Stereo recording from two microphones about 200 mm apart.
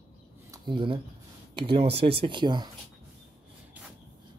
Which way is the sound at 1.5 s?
25° right (ahead or behind).